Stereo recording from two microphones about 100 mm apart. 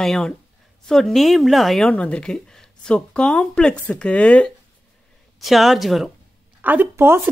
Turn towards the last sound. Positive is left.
turn(degrees=-25)  # may be behind; listen again after turning